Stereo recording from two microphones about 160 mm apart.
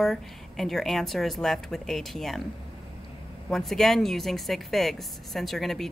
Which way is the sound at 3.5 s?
Centre (ahead or behind).